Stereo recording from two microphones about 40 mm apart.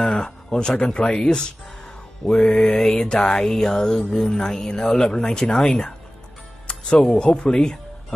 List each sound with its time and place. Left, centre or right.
0.0 s speech: centre
1.1 s music: centre
5.7 s speech: left
7.2 s speech: left